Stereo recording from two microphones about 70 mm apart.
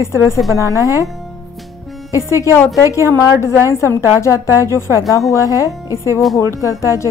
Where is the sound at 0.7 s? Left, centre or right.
Left.